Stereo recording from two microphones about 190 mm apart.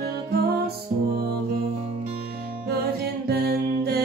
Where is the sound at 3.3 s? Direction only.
55° right (ahead or behind).